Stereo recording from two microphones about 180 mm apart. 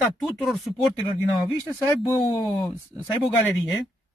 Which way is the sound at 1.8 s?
15° left (ahead or behind).